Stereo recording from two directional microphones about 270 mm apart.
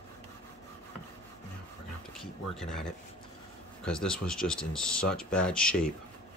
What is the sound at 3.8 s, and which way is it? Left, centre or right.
Speech, centre.